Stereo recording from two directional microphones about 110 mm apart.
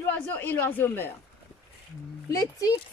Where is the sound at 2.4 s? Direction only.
30° left (ahead or behind).